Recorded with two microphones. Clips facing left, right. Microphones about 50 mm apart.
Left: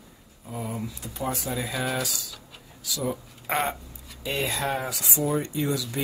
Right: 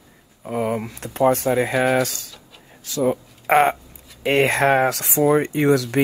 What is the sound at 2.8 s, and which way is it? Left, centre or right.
Speech, right.